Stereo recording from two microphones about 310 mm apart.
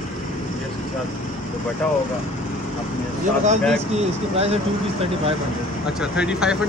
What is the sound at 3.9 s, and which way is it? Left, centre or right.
Speech, centre.